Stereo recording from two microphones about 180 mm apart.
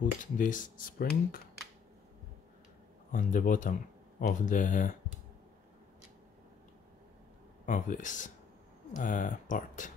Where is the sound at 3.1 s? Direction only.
45° left (ahead or behind).